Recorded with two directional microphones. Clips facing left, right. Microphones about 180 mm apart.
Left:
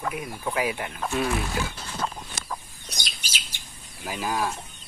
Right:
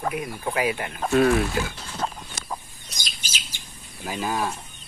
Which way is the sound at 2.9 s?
65° left (ahead or behind).